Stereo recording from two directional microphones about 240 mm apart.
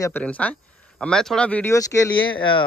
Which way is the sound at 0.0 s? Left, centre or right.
Centre.